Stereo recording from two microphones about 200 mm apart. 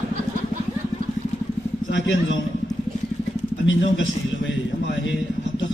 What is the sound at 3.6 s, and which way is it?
Speech, 70° left (ahead or behind).